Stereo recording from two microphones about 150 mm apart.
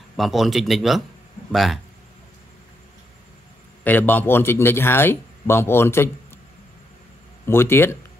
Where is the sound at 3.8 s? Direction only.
10° left (ahead or behind).